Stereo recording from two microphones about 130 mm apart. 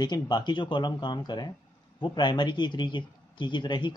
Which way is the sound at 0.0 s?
35° left (ahead or behind).